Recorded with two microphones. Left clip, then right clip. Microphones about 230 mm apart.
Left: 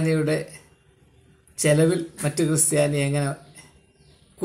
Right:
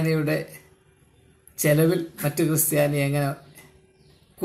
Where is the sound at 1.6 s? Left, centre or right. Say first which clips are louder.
Left 1 dB; centre.